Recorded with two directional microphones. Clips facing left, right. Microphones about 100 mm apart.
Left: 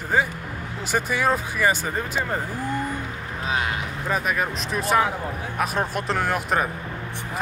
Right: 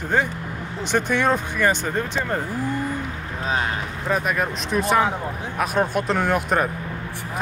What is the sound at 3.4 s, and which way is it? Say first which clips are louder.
Boat: right 2 dB; 35° right (ahead or behind).